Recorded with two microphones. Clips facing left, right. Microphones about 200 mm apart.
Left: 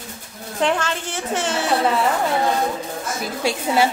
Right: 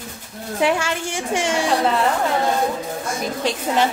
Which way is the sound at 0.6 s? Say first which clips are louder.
Right 1 dB; 10° right (ahead or behind).